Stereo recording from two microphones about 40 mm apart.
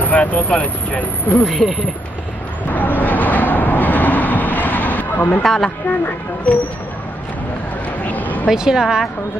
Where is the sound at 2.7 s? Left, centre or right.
Left.